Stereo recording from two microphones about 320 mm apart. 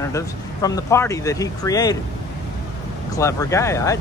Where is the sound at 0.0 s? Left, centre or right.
Centre.